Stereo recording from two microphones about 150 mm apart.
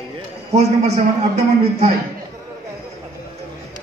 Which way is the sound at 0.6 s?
45° right (ahead or behind).